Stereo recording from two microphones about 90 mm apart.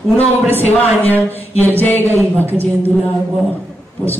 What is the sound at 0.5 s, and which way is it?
A woman's voice, 20° left (ahead or behind).